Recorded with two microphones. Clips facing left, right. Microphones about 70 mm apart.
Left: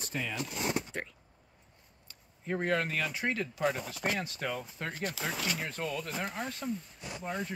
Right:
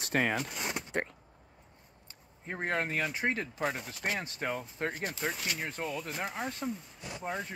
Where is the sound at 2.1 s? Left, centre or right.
Right.